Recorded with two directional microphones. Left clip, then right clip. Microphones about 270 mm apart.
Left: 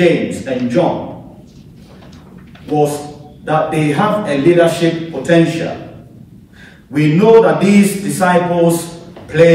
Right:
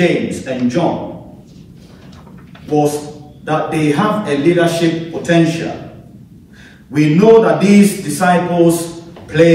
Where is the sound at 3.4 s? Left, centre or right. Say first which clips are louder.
Left 1 dB; centre.